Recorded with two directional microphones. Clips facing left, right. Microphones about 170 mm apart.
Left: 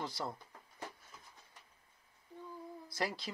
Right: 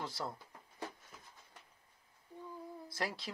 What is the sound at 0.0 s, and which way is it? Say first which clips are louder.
Speech: left 1 dB; centre (ahead or behind).